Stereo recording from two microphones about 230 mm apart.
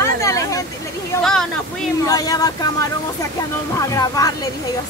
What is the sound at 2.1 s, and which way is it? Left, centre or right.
Speech, centre.